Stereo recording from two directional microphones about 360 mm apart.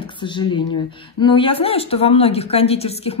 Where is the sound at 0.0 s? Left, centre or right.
Centre.